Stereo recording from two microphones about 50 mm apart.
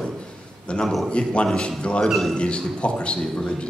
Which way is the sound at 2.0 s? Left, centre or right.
Centre.